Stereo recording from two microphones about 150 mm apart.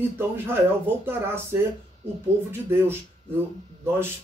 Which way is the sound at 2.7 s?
15° right (ahead or behind).